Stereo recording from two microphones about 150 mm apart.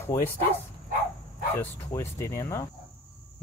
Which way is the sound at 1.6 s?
15° left (ahead or behind).